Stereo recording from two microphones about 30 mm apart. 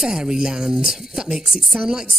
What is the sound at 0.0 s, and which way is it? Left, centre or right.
A woman's voice, centre.